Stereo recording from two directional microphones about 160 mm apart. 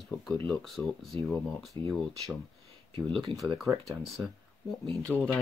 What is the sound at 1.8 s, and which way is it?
Speech, 20° left (ahead or behind).